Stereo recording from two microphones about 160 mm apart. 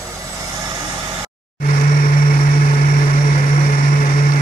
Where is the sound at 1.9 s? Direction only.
55° left (ahead or behind).